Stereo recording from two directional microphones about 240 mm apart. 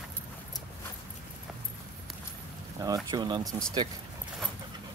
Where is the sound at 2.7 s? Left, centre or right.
Centre.